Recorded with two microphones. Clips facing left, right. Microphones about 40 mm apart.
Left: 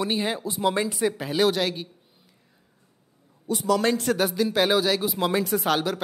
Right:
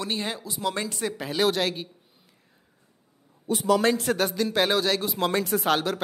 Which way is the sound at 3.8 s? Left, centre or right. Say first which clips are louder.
Even; centre.